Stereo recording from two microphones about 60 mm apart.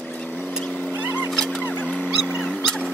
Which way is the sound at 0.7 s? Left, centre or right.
Centre.